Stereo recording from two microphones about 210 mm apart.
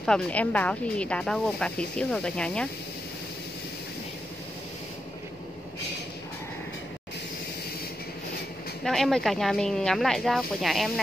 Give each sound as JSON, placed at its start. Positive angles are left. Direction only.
{"t": 0.0, "sound": "speech", "side_deg": 5}
{"t": 8.8, "sound": "speech", "side_deg": 0}